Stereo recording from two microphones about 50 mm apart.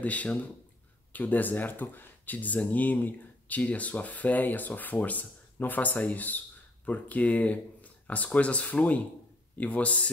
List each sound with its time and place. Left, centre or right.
0.0 s speech: left